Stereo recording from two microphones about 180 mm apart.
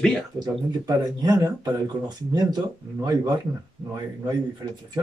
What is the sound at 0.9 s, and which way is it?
Speech, 20° right (ahead or behind).